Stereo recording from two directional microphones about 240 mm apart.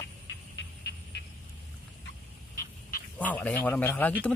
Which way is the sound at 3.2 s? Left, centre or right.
Centre.